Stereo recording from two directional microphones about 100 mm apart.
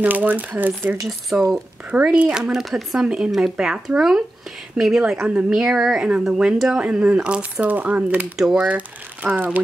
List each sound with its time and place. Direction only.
0.0 s speech: 15° right (ahead or behind)